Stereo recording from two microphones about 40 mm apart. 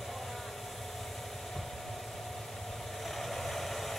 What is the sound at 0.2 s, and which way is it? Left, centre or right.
Vehicle, centre.